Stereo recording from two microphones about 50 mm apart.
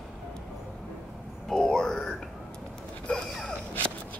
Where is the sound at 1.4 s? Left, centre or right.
Centre.